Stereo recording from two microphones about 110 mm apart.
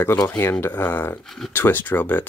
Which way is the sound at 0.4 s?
20° left (ahead or behind).